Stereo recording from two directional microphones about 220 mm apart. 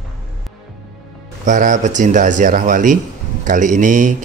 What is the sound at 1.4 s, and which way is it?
Speech, 35° right (ahead or behind).